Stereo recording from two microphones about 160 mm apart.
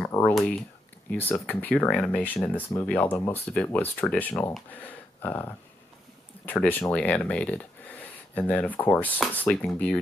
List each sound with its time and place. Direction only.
0.3 s speech: centre (ahead or behind)